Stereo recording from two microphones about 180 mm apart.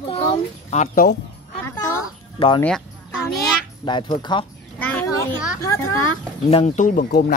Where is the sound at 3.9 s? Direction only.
25° left (ahead or behind).